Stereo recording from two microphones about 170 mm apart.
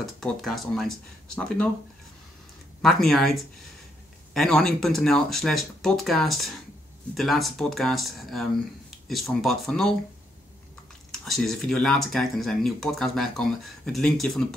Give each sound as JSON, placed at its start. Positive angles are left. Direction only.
{"t": 0.0, "sound": "speech", "side_deg": 0}
{"t": 2.8, "sound": "speech", "side_deg": 0}
{"t": 11.1, "sound": "speech", "side_deg": 0}